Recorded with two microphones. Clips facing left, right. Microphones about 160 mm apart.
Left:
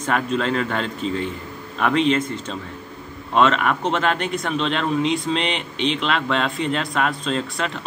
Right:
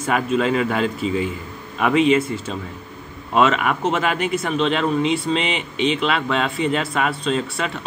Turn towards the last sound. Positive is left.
turn(degrees=-5)  # may be behind; listen again after turning